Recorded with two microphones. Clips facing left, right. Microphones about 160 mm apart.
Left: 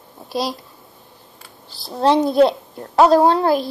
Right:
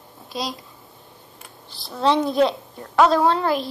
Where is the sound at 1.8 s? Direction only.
35° left (ahead or behind).